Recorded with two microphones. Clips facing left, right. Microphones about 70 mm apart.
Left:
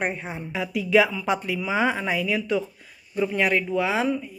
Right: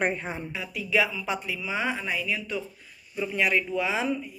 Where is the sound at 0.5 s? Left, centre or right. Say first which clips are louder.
Left 8 dB; left.